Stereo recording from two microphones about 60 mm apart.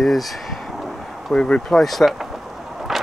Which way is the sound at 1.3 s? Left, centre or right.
Centre.